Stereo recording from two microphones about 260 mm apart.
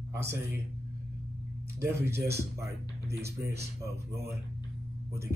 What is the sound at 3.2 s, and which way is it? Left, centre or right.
Speech, centre.